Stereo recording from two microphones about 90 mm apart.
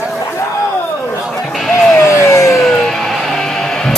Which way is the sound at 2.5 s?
5° left (ahead or behind).